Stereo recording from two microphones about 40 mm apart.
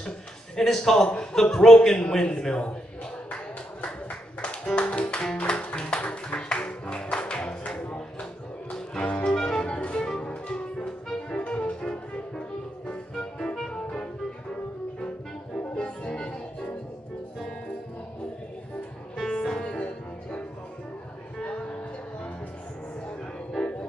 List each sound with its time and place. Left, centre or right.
0.6 s a man's voice: centre
4.4 s music: left
7.9 s a sound: left
9.2 s music: centre
15.7 s music: left
19.3 s music: centre
19.8 s music: left
23.6 s music: centre